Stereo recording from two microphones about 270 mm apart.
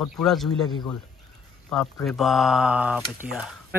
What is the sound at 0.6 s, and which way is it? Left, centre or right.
Speech, centre.